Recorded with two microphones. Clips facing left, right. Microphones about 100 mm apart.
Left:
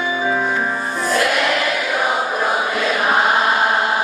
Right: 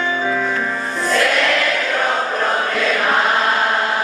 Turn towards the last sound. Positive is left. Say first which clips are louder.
# left 1 dB
turn(degrees=15)  # may be behind; listen again after turning